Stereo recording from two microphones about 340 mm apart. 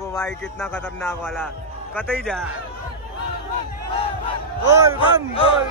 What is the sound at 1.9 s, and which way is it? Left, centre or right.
Speech, centre.